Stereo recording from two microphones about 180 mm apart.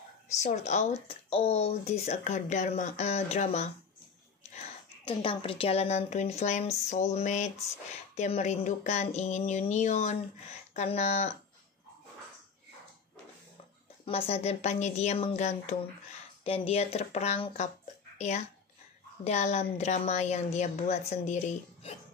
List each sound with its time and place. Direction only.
0.4 s speech: 40° left (ahead or behind)
5.0 s speech: 30° left (ahead or behind)
14.0 s speech: 30° left (ahead or behind)
18.1 s a sound: 40° left (ahead or behind)
19.2 s speech: 40° left (ahead or behind)